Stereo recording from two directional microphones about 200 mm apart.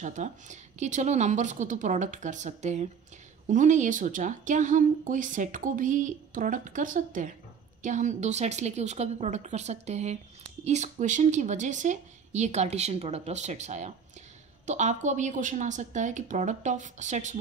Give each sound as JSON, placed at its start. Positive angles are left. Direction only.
{"t": 0.0, "sound": "a woman's voice", "side_deg": -35}